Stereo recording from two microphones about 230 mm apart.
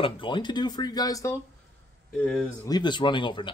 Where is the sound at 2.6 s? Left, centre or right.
Centre.